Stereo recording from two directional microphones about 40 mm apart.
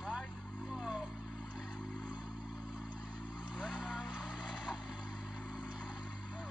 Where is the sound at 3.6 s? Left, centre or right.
Centre.